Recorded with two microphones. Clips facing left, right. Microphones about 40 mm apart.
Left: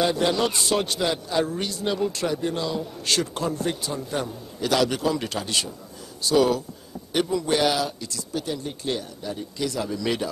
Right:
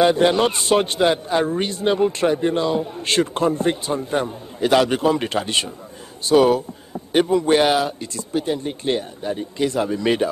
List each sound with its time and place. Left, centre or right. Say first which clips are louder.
0.0 s a man's voice: right 6 dB; right